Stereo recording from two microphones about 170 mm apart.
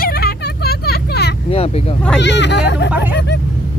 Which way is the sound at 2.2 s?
90° left.